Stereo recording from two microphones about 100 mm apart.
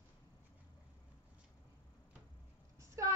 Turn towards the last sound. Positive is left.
turn(degrees=-30)  # may be behind; listen again after turning